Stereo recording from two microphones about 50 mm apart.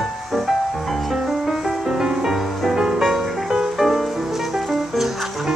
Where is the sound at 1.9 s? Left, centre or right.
Centre.